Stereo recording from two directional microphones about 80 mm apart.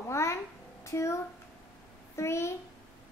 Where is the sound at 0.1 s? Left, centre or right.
Left.